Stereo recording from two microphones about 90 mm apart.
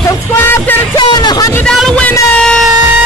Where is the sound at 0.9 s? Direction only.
50° left (ahead or behind).